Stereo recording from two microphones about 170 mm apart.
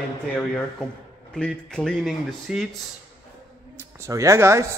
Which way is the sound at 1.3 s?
5° left (ahead or behind).